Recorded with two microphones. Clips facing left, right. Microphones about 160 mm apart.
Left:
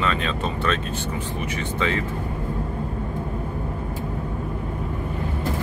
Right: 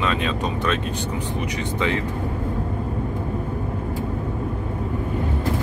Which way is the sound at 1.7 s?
15° right (ahead or behind).